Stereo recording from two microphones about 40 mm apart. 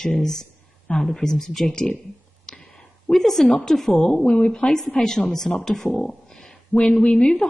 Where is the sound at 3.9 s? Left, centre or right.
Centre.